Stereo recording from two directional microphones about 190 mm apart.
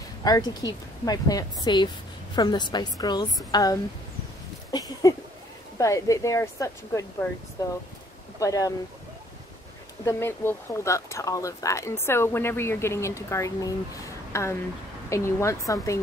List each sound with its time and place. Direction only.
0.2 s a woman's voice: 20° left (ahead or behind)
4.6 s a sound: 20° left (ahead or behind)
5.8 s a woman's voice: 15° left (ahead or behind)
10.0 s speech: 15° left (ahead or behind)